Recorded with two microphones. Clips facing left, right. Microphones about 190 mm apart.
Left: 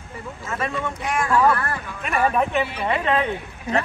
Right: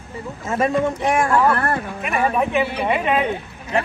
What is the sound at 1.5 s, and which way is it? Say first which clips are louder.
Speech: right 4 dB; 55° right (ahead or behind).